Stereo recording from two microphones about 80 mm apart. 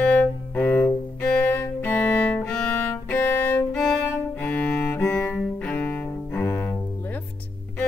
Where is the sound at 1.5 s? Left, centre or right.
Left.